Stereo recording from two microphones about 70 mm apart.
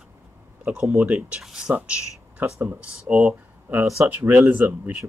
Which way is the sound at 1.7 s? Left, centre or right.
Right.